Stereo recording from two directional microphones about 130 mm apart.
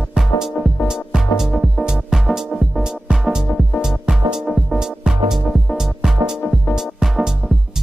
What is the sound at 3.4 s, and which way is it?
Music, 10° left (ahead or behind).